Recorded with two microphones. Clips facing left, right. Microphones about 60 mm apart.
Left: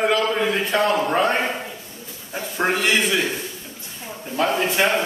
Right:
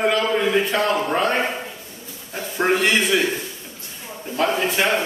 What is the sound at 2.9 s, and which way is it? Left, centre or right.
Speech, centre.